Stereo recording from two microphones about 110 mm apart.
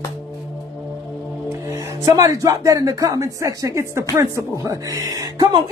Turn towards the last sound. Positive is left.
turn(degrees=-35)  # may be behind; listen again after turning